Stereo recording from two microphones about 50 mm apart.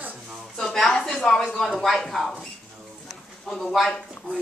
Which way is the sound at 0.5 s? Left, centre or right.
Centre.